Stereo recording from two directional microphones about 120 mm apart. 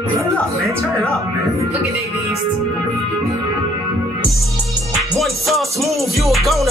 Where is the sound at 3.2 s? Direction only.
25° right (ahead or behind).